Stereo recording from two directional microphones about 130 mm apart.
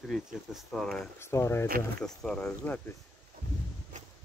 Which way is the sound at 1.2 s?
20° left (ahead or behind).